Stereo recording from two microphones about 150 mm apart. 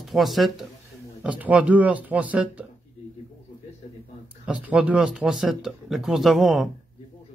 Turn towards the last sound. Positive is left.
turn(degrees=0)  # may be behind; listen again after turning